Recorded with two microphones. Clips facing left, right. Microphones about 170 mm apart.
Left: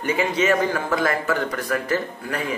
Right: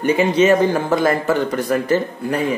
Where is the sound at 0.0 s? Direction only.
25° right (ahead or behind).